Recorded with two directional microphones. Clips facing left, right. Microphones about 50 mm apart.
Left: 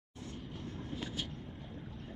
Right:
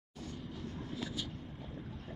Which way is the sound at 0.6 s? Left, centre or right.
Left.